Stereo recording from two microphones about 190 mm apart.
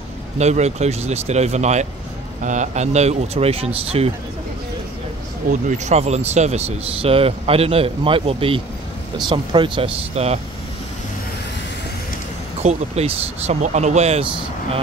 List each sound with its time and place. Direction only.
0.4 s speech: 35° right (ahead or behind)
5.5 s speech: 40° right (ahead or behind)
12.6 s speech: 35° right (ahead or behind)